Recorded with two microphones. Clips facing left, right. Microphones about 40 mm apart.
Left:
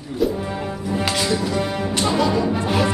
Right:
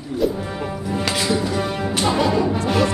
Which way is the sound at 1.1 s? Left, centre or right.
Centre.